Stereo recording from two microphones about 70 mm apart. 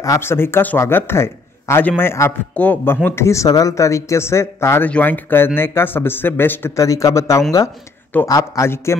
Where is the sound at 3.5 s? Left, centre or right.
Left.